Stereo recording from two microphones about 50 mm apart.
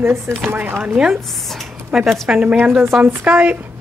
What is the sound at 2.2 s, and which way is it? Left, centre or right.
Speech, centre.